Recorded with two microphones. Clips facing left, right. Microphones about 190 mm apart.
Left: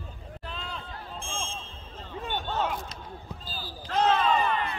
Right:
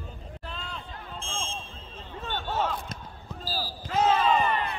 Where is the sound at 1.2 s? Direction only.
15° left (ahead or behind).